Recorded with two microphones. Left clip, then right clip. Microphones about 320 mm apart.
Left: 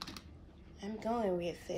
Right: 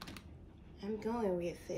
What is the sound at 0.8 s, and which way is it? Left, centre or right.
Speech, centre.